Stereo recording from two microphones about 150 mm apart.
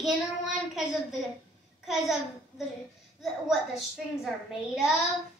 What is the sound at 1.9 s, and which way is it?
A woman's voice, centre (ahead or behind).